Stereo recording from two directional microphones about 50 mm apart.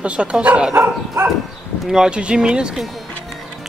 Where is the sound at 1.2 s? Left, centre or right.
Right.